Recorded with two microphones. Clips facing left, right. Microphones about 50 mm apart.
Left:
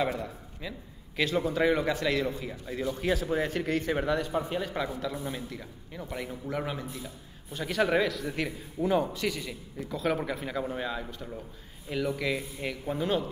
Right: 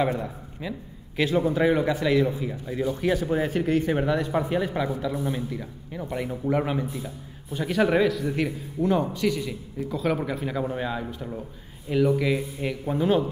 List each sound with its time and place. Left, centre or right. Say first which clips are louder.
0.2 s a man's voice: right 5 dB; centre